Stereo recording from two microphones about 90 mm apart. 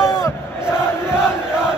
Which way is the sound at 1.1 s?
10° right (ahead or behind).